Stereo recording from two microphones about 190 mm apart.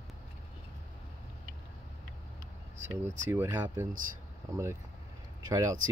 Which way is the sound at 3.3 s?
10° right (ahead or behind).